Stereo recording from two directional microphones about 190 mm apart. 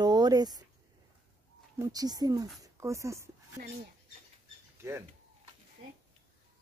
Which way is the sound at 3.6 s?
50° right (ahead or behind).